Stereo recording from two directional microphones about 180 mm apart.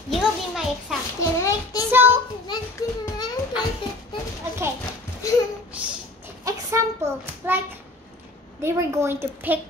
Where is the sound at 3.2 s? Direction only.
20° left (ahead or behind).